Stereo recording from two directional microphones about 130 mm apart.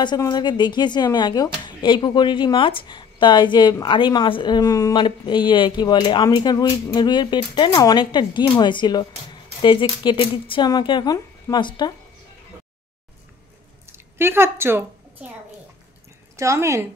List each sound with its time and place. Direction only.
0.3 s speech: 35° left (ahead or behind)
13.8 s a sound: 20° right (ahead or behind)
16.3 s a woman's voice: 25° right (ahead or behind)